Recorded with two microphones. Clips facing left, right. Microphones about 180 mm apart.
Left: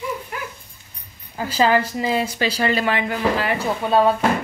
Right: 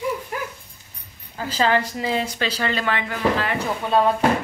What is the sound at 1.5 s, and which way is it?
A woman's voice, 10° left (ahead or behind).